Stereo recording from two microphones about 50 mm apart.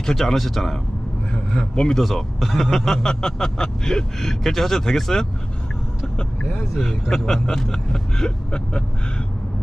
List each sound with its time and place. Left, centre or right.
0.0 s speech: centre
1.3 s speech: centre
2.0 s speech: centre
6.8 s speech: centre